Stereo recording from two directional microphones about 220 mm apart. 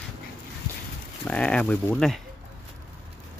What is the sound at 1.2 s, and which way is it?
Speech, 5° left (ahead or behind).